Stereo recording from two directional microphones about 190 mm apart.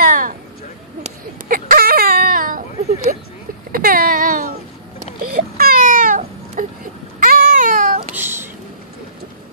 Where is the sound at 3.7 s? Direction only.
50° right (ahead or behind).